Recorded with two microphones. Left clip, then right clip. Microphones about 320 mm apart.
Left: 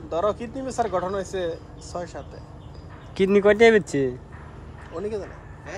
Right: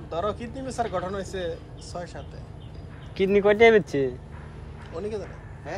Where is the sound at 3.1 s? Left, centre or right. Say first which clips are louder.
Left 2 dB; left.